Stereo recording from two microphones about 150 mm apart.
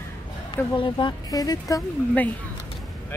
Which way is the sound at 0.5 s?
35° left (ahead or behind).